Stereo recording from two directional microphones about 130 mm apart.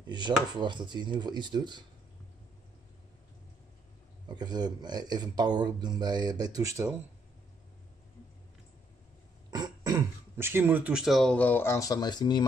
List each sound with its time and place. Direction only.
0.0 s speech: 35° right (ahead or behind)
4.3 s speech: 30° right (ahead or behind)
9.5 s speech: 30° right (ahead or behind); by 12.4 s 35° left (ahead or behind)